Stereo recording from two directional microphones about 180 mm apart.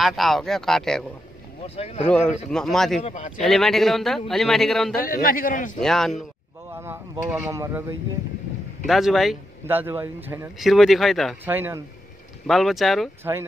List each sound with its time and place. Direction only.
0.0 s a man's voice: centre (ahead or behind)
1.8 s speech: 35° left (ahead or behind)
2.0 s a man's voice: 5° left (ahead or behind)
3.0 s speech: 40° left (ahead or behind)
3.4 s a man's voice: centre (ahead or behind)
5.0 s a man's voice: 55° left (ahead or behind)
5.8 s a man's voice: centre (ahead or behind)
6.7 s speech: 15° right (ahead or behind)
8.8 s a man's voice: centre (ahead or behind)
9.7 s speech: 10° right (ahead or behind)
10.6 s a man's voice: centre (ahead or behind)
11.4 s speech: 10° right (ahead or behind)
12.4 s a man's voice: centre (ahead or behind)
13.2 s speech: 15° right (ahead or behind)